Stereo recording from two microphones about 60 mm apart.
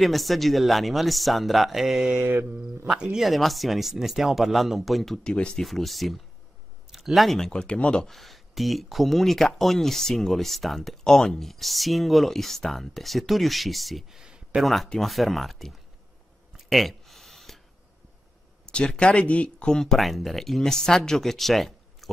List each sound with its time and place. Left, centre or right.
0.0 s speech: centre
5.2 s speech: centre
5.6 s speech: centre
7.5 s speech: centre
8.0 s speech: centre
14.2 s a sound: centre
14.6 s speech: centre
16.5 s a sound: centre
18.7 s speech: centre